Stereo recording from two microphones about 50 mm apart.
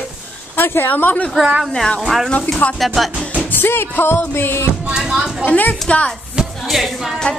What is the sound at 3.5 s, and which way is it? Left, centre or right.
Music, left.